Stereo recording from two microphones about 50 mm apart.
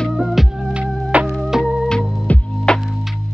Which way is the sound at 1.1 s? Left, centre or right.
Right.